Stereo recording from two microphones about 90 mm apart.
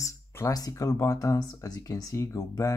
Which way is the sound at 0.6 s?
40° left (ahead or behind).